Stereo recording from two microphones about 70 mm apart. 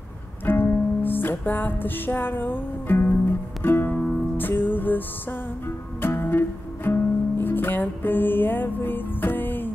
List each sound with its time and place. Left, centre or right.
0.5 s music: left